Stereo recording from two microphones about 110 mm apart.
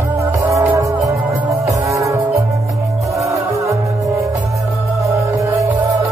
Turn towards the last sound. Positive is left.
turn(degrees=-30)  # may be behind; listen again after turning